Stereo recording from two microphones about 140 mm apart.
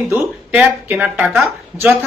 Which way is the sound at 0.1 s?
10° right (ahead or behind).